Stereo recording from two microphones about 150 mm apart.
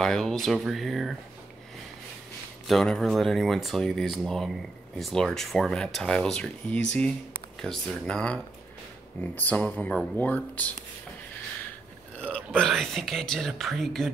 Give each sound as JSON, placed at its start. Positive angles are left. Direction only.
{"t": 0.0, "sound": "speech", "side_deg": 0}
{"t": 2.6, "sound": "speech", "side_deg": 0}
{"t": 12.2, "sound": "speech", "side_deg": 5}